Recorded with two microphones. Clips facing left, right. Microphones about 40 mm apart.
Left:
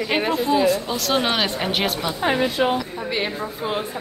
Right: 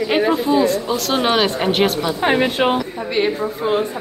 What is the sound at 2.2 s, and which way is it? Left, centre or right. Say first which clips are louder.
Speech: right 3 dB; right.